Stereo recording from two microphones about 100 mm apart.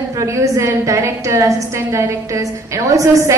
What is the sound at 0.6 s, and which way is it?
Speech, 30° right (ahead or behind).